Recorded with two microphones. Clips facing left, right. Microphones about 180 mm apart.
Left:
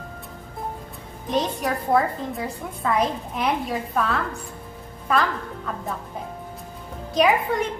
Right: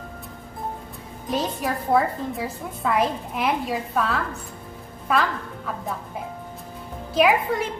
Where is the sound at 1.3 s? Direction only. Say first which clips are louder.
Left 1 dB; 5° right (ahead or behind).